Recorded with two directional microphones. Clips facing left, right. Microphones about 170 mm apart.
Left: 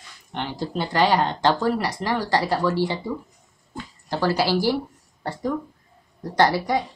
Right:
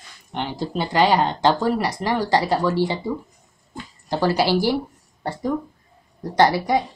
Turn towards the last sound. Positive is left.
turn(degrees=-15)  # may be behind; listen again after turning